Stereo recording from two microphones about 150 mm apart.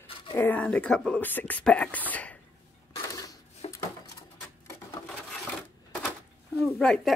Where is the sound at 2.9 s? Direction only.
25° left (ahead or behind).